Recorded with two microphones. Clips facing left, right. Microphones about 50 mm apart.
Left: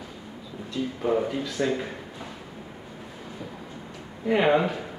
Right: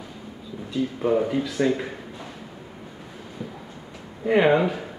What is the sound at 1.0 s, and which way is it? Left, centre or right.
Speech, centre.